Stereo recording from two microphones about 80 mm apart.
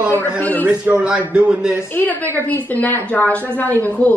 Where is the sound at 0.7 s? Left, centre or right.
Centre.